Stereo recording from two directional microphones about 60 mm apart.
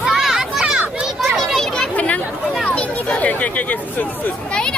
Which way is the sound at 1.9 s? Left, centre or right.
Left.